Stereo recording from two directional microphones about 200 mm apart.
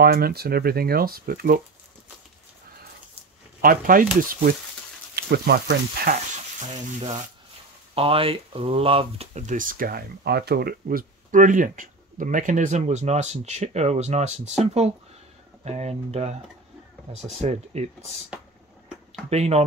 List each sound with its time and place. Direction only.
0.0 s speech: 50° right (ahead or behind)
3.6 s speech: 45° right (ahead or behind)
7.9 s speech: 30° right (ahead or behind)
19.2 s speech: 30° right (ahead or behind)